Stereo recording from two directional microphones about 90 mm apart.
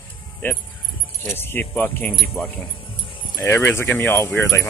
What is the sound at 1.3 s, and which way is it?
Speech, 25° left (ahead or behind).